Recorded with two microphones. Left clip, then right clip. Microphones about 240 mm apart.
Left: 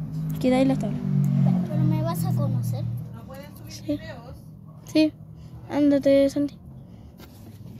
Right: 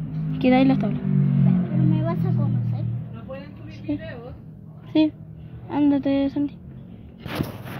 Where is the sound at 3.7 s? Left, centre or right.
Centre.